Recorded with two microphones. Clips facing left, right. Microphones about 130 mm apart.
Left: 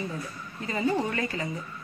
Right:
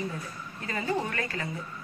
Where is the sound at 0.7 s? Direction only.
25° left (ahead or behind).